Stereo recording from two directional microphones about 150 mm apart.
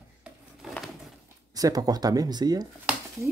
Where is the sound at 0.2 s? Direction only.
5° right (ahead or behind).